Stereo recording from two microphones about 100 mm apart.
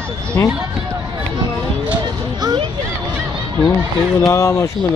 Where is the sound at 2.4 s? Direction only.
45° right (ahead or behind).